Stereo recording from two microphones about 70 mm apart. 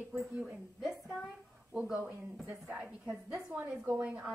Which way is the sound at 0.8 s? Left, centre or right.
Centre.